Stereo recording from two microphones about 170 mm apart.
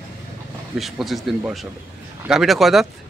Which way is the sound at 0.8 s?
Centre (ahead or behind).